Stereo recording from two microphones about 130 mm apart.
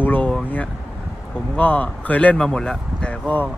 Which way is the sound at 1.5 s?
10° left (ahead or behind).